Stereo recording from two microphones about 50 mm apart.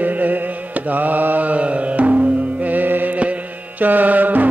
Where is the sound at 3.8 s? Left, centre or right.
Right.